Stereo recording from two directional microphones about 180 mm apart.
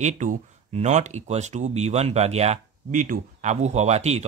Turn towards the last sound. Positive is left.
turn(degrees=-35)  # may be behind; listen again after turning